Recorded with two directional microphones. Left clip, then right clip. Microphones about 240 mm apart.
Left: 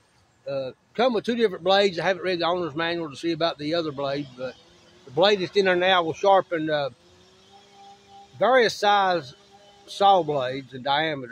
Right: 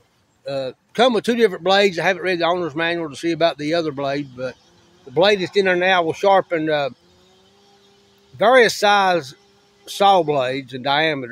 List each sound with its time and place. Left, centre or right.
0.5 s speech: right
8.4 s speech: right